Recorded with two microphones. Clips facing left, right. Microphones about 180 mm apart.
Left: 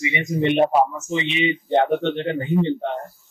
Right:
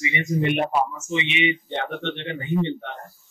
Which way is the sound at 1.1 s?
40° left (ahead or behind).